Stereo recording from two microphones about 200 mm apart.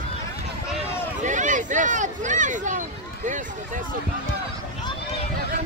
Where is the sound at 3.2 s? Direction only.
40° right (ahead or behind).